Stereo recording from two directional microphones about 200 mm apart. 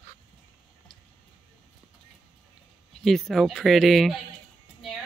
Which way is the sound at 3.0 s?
Centre (ahead or behind).